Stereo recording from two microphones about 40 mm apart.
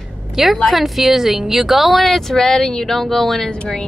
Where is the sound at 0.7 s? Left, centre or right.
Centre.